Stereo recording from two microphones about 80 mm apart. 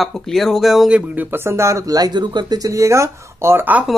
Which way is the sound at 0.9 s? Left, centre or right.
Centre.